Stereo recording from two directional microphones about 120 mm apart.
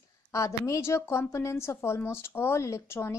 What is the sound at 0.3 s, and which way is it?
A woman's voice, 25° left (ahead or behind).